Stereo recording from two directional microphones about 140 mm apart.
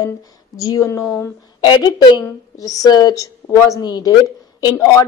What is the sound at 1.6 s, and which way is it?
A woman's voice, 30° left (ahead or behind).